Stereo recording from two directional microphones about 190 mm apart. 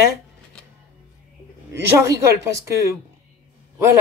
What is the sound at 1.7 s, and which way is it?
Speech, 15° right (ahead or behind).